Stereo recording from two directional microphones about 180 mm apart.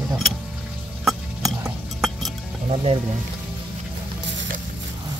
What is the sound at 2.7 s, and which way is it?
Music, 30° right (ahead or behind).